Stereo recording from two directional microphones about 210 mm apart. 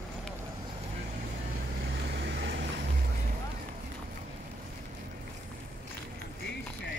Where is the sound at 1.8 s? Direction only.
50° right (ahead or behind).